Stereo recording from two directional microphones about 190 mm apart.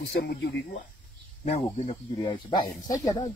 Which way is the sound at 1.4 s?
35° left (ahead or behind).